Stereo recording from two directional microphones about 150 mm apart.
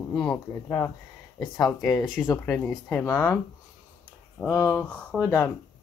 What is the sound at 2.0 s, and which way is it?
Speech, 5° right (ahead or behind).